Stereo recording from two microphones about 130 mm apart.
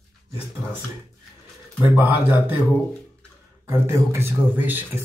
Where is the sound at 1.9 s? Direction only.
15° right (ahead or behind).